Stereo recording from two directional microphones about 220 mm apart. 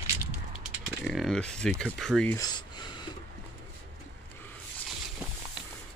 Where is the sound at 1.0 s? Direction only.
Centre (ahead or behind).